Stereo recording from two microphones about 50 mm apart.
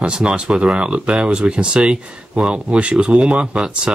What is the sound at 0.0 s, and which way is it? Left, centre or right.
Speech, right.